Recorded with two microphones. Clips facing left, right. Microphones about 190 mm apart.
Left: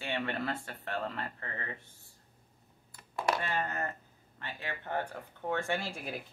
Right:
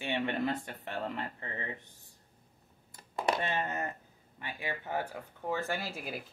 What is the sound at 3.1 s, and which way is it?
Speech, 20° right (ahead or behind).